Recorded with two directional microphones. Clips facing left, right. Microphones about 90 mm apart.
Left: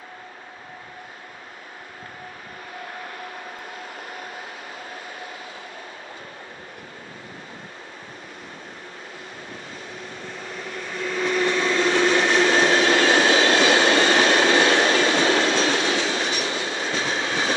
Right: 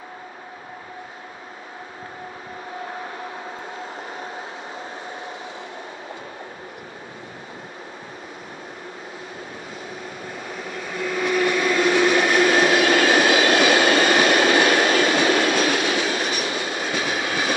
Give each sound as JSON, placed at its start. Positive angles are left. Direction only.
{"t": 10.8, "sound": "train", "side_deg": -5}
{"t": 14.5, "sound": "train", "side_deg": 25}
{"t": 16.4, "sound": "train", "side_deg": -15}